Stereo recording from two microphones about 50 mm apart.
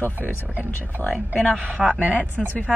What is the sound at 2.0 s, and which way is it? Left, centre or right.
Speech, right.